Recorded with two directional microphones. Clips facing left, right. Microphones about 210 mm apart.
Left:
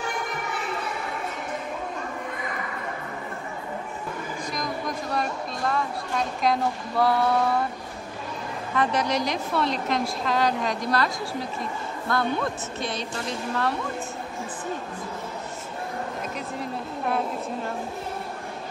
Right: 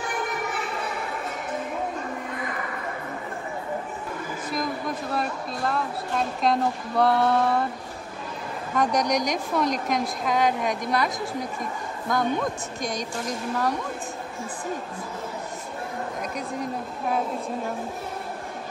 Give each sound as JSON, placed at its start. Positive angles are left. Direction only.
{"t": 4.5, "sound": "speech", "side_deg": -5}
{"t": 8.9, "sound": "speech", "side_deg": -15}
{"t": 12.1, "sound": "speech", "side_deg": -15}